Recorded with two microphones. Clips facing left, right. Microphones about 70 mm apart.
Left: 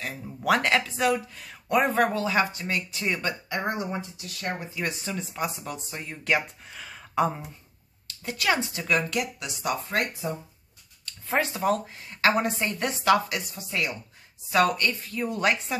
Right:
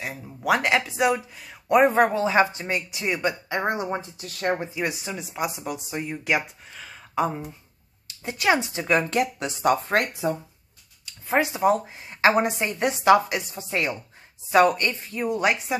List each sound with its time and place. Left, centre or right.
0.0 s speech: centre
2.0 s speech: right
4.7 s speech: centre
6.6 s speech: centre
8.1 s speech: right
11.1 s speech: centre